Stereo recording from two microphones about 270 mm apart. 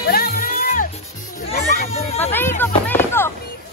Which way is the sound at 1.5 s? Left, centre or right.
Left.